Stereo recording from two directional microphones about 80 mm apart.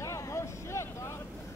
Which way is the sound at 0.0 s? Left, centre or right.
Left.